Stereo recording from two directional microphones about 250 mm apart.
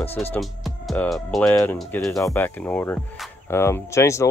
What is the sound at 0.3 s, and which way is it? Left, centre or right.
Speech, centre.